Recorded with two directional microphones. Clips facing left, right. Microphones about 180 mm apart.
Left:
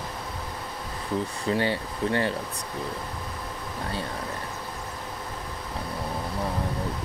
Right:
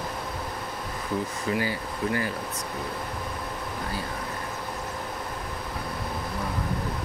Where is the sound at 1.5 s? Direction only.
30° left (ahead or behind).